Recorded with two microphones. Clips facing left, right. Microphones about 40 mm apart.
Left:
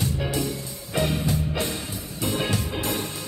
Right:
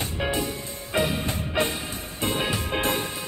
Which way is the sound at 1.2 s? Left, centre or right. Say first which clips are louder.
Even; right.